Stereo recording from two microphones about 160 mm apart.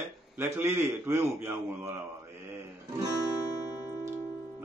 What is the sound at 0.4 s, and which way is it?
Speech, 15° right (ahead or behind).